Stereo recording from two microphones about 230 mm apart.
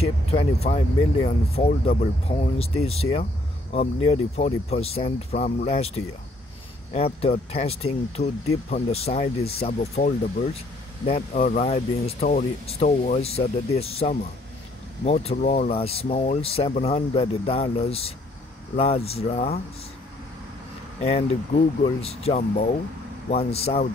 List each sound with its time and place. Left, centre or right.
0.0 s speech: left
7.2 s speech: left
21.0 s speech: left